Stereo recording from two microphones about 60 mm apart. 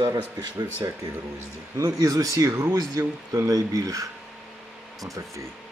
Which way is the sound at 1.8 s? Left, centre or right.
Right.